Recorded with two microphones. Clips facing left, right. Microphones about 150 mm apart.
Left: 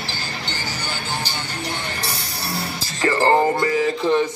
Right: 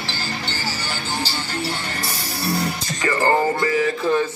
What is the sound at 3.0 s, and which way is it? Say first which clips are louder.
Music: left 2 dB; 25° left (ahead or behind).